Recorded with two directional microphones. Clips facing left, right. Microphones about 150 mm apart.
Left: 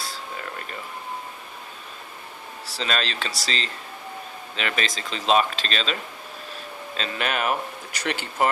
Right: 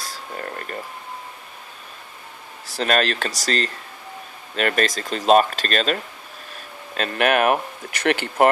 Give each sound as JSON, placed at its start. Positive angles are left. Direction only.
{"t": 0.0, "sound": "a sound", "side_deg": -45}
{"t": 2.7, "sound": "speech", "side_deg": -55}
{"t": 7.0, "sound": "speech", "side_deg": -55}